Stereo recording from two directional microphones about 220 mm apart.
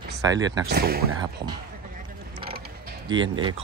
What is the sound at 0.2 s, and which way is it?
Speech, 15° right (ahead or behind).